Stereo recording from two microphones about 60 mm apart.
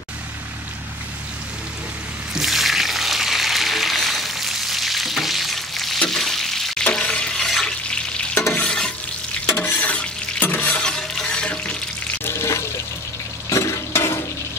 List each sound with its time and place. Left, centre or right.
2.3 s a sound: centre
6.0 s frying: centre
6.8 s water: centre
8.6 s stir: centre
10.4 s stir: left
10.8 s music: centre
12.3 s water: left
13.5 s stir: left